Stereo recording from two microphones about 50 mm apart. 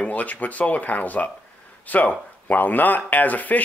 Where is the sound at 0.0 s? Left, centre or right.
Left.